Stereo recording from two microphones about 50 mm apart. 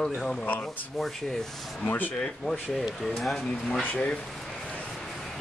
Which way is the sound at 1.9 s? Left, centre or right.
Left.